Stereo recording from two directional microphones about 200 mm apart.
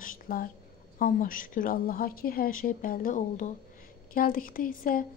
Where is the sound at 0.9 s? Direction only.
45° left (ahead or behind).